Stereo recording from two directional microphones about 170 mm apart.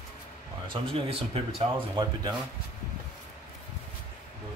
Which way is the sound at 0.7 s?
30° right (ahead or behind).